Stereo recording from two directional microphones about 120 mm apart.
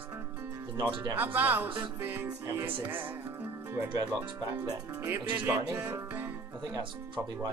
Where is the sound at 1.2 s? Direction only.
15° right (ahead or behind).